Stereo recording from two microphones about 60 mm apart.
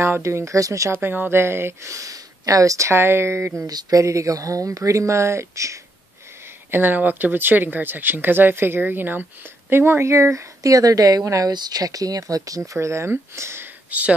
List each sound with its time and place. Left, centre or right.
0.2 s speech: right
0.9 s speech: right
2.9 s speech: right
3.6 s speech: right
6.7 s speech: right
10.6 s speech: right
12.7 s speech: right
13.8 s speech: right